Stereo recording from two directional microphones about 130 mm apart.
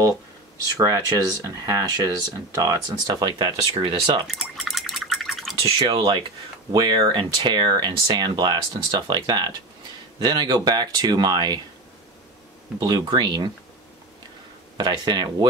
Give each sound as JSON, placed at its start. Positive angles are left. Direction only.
{"t": 0.7, "sound": "speech", "side_deg": -25}
{"t": 4.3, "sound": "a sound", "side_deg": 0}
{"t": 5.6, "sound": "speech", "side_deg": -45}
{"t": 12.7, "sound": "speech", "side_deg": -30}
{"t": 14.8, "sound": "speech", "side_deg": -35}